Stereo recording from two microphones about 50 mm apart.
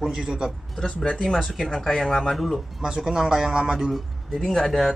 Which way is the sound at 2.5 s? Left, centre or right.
Centre.